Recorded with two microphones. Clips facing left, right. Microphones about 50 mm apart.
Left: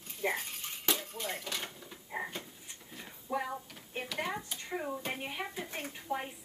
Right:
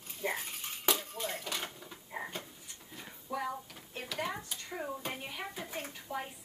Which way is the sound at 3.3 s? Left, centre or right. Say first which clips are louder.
Left 2 dB; left.